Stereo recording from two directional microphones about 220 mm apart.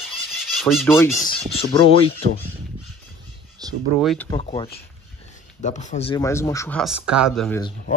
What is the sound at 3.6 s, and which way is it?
Speech, 15° right (ahead or behind).